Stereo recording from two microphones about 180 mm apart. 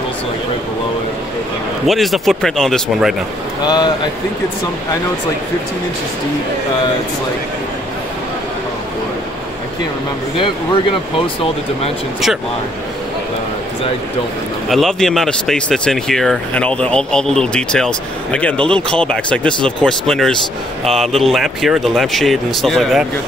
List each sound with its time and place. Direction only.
1.9 s speech: centre (ahead or behind)
3.6 s speech: 25° left (ahead or behind)
10.3 s speech: 30° left (ahead or behind)
14.7 s speech: centre (ahead or behind)